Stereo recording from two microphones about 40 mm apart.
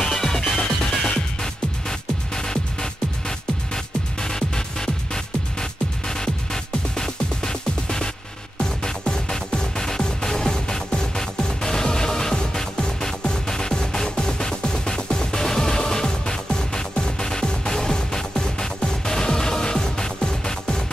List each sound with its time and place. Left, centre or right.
0.0 s music: centre